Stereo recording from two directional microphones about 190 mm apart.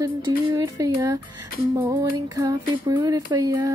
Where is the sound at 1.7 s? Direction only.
20° right (ahead or behind).